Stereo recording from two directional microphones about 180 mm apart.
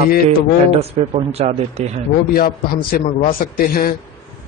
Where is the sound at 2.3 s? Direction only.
55° left (ahead or behind).